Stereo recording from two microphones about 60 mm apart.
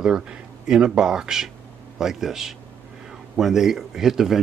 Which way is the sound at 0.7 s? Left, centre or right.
Centre.